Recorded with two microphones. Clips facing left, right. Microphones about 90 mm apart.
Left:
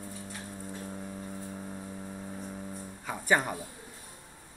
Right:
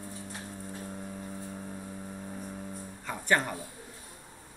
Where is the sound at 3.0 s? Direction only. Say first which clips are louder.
Left 1 dB; 5° left (ahead or behind).